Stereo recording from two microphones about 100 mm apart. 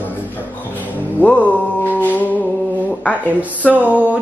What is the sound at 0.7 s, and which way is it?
Music, 15° left (ahead or behind).